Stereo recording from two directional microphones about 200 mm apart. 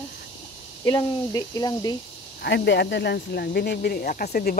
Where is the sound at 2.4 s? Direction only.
55° left (ahead or behind).